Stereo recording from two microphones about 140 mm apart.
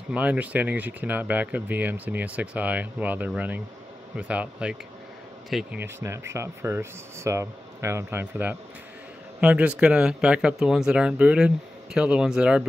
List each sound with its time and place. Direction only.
0.1 s speech: 10° right (ahead or behind)
5.8 s speech: 20° right (ahead or behind)